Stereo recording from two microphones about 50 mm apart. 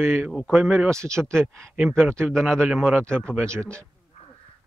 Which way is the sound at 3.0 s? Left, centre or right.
Centre.